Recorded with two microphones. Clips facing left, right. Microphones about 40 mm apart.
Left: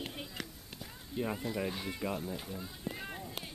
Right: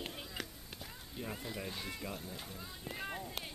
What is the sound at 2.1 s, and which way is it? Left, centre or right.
Run, centre.